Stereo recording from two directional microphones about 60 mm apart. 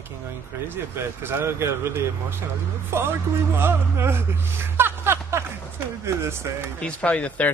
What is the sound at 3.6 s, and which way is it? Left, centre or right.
Speech, right.